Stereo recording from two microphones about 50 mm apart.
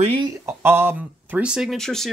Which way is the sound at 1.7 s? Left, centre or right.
Centre.